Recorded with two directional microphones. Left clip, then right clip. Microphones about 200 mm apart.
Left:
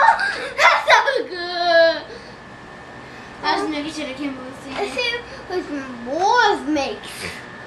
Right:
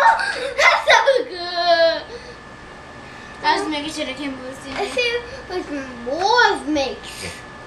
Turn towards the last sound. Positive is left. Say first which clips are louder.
# right 1 dB
turn(degrees=-10)  # may be behind; listen again after turning